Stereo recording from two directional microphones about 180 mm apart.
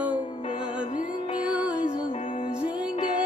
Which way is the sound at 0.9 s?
45° left (ahead or behind).